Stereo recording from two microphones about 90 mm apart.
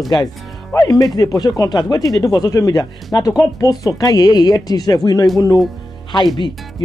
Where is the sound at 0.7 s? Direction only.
40° left (ahead or behind).